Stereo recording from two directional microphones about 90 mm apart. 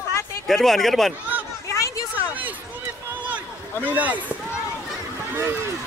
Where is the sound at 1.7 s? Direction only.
35° left (ahead or behind).